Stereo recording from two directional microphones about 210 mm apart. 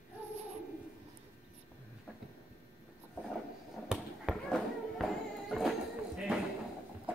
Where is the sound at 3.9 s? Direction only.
Centre (ahead or behind).